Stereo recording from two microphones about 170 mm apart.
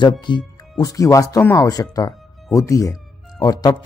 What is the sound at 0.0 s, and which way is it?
Speech, 25° left (ahead or behind).